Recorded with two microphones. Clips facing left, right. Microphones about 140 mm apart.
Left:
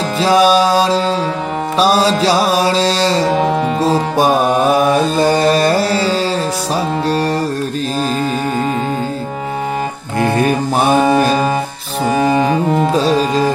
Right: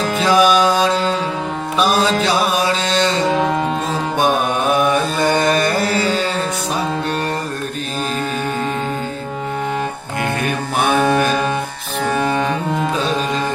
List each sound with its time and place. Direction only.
0.2 s music: 30° left (ahead or behind)
3.3 s music: 5° left (ahead or behind)
3.8 s music: 35° left (ahead or behind)
10.2 s music: 35° left (ahead or behind)
12.1 s music: 10° left (ahead or behind)
12.7 s music: 35° left (ahead or behind)